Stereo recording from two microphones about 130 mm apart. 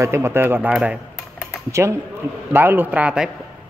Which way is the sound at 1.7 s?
20° right (ahead or behind).